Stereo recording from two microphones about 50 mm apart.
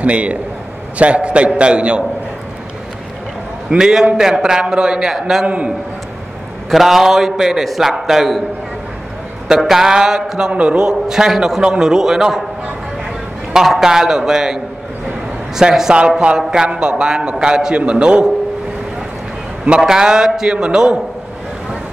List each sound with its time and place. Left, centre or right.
0.0 s a man's voice: right
3.7 s a man's voice: centre
6.7 s a man's voice: centre
9.6 s a man's voice: centre
10.5 s a man's voice: right
10.9 s a man's voice: centre
13.5 s a man's voice: centre
16.2 s a man's voice: centre
19.9 s a man's voice: centre